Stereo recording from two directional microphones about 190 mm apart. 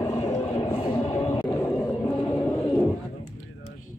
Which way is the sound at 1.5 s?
10° left (ahead or behind).